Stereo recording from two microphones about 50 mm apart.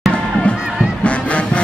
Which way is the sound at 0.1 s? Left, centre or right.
Left.